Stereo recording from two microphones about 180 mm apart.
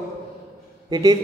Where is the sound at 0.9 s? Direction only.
25° right (ahead or behind).